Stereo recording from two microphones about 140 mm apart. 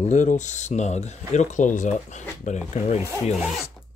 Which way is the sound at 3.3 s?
Centre (ahead or behind).